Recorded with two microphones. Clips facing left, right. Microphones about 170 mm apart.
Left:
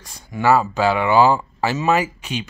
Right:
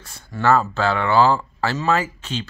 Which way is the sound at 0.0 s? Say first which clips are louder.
Left 1 dB; 15° left (ahead or behind).